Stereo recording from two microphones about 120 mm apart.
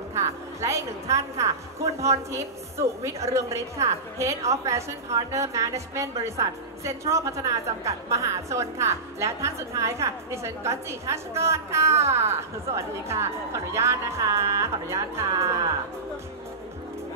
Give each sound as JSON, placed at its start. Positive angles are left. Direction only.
{"t": 0.1, "sound": "music", "side_deg": -25}
{"t": 1.4, "sound": "a woman's voice", "side_deg": -25}